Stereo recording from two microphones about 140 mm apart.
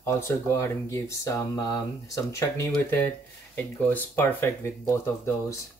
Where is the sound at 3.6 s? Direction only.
15° left (ahead or behind).